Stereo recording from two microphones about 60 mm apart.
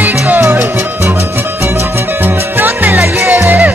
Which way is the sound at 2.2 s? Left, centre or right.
Right.